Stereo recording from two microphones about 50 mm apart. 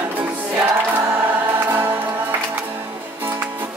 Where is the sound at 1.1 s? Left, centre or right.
Right.